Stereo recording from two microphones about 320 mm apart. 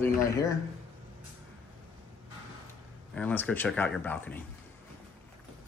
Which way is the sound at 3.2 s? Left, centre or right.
Centre.